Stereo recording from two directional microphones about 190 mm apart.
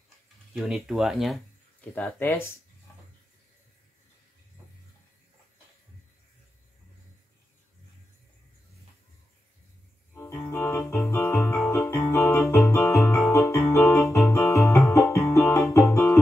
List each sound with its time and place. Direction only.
0.6 s speech: centre (ahead or behind)
2.0 s speech: 10° left (ahead or behind)
10.1 s music: 15° left (ahead or behind)
11.7 s keyboard: 15° left (ahead or behind)
13.3 s music: 15° left (ahead or behind)